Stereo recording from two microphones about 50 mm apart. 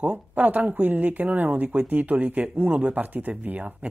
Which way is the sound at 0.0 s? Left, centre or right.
Right.